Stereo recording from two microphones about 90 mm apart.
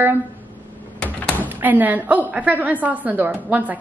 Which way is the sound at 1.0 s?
15° left (ahead or behind).